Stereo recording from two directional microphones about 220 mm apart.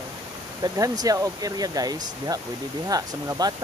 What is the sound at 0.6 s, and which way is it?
Speech, 15° right (ahead or behind).